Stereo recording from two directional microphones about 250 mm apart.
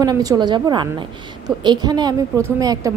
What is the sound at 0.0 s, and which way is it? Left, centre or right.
A woman's voice, centre.